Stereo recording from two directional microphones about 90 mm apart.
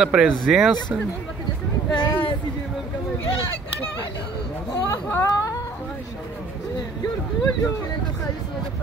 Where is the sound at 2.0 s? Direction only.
60° left (ahead or behind).